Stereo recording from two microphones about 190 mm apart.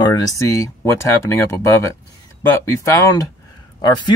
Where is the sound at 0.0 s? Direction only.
20° left (ahead or behind).